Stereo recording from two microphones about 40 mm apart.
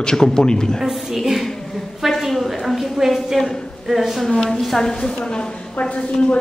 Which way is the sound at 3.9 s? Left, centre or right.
Centre.